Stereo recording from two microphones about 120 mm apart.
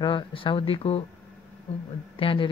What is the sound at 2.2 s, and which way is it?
Speech, 45° left (ahead or behind).